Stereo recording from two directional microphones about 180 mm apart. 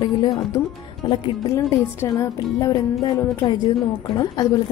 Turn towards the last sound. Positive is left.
turn(degrees=20)  # may be behind; listen again after turning